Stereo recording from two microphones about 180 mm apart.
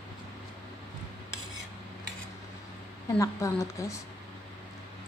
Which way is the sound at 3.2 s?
15° left (ahead or behind).